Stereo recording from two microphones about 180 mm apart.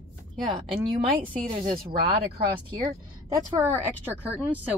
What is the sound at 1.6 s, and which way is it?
Speech, 50° right (ahead or behind).